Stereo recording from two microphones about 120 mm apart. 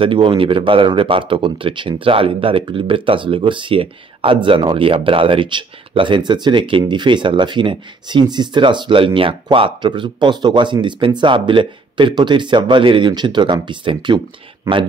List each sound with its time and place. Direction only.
0.0 s speech: 45° right (ahead or behind)